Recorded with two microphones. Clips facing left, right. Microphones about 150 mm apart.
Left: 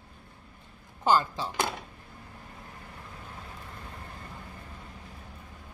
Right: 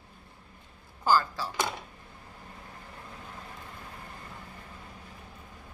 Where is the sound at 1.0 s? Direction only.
20° left (ahead or behind).